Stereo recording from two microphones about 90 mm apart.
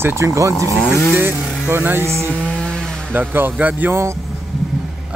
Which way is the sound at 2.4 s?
10° left (ahead or behind).